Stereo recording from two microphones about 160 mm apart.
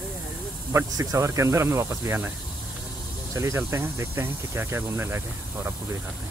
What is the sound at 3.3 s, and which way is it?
Speech, 20° right (ahead or behind).